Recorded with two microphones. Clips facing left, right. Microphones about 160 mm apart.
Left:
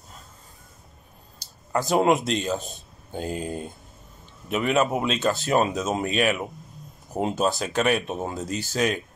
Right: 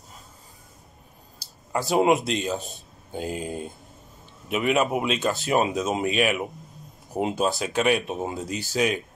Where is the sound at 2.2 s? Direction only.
Centre (ahead or behind).